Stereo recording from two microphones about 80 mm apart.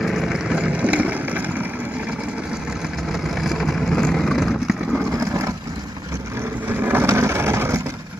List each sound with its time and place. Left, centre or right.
0.0 s vehicle: centre; by 1.7 s right
3.1 s vehicle: centre
6.7 s vehicle: right